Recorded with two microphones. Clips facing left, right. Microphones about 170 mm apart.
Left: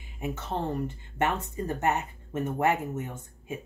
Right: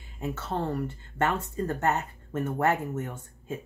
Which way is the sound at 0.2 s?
15° left (ahead or behind).